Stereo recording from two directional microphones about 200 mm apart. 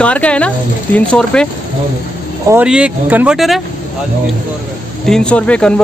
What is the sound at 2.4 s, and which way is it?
Speech, 10° right (ahead or behind).